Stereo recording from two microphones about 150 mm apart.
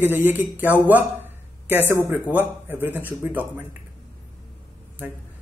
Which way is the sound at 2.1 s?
15° right (ahead or behind).